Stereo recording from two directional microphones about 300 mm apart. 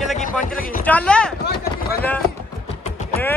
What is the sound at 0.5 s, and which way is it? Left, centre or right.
Speech, left.